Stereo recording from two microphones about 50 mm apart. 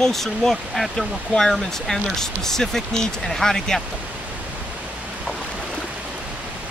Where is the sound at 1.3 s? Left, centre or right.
Centre.